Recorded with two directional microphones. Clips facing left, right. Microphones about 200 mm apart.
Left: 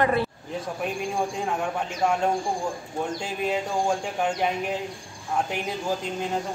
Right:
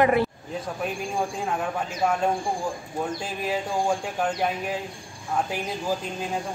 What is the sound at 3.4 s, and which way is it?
Speech, centre (ahead or behind).